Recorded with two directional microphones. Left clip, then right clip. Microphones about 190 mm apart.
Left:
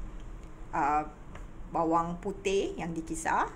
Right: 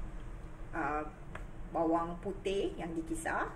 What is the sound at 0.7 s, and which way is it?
Speech, 55° left (ahead or behind).